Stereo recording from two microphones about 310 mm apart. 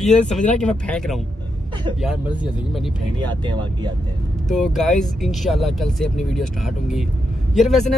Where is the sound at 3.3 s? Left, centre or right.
Centre.